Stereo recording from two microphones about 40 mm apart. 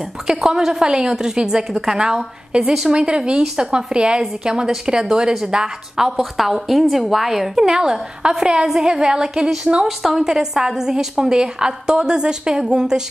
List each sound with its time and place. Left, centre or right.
0.3 s a woman's voice: centre
2.9 s a woman's voice: right
6.0 s a woman's voice: centre
8.6 s a woman's voice: centre